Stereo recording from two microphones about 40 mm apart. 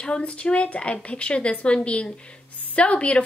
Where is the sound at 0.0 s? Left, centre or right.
Left.